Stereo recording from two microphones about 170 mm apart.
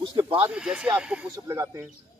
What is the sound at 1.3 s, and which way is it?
Speech, 20° right (ahead or behind).